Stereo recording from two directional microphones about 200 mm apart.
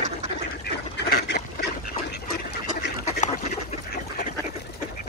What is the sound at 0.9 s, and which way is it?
Duck, 55° left (ahead or behind).